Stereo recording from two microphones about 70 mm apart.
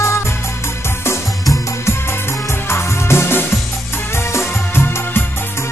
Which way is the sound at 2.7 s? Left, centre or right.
Left.